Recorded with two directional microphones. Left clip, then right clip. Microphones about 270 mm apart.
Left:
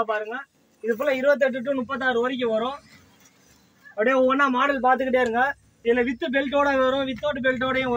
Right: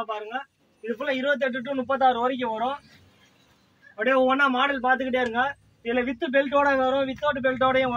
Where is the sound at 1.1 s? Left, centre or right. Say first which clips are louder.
Left 4 dB; centre.